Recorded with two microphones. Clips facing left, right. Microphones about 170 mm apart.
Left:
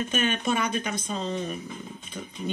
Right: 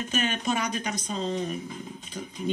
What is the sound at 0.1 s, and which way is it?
Speech, 55° left (ahead or behind).